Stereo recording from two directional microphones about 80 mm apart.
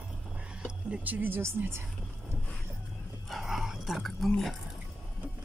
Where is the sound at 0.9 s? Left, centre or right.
Right.